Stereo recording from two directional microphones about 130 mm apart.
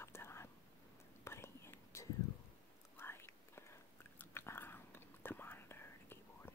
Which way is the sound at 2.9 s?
20° left (ahead or behind).